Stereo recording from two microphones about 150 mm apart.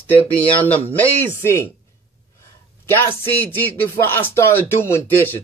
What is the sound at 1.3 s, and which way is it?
Speech, 15° left (ahead or behind).